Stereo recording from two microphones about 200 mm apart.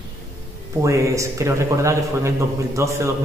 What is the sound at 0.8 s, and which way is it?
Speech, 15° right (ahead or behind).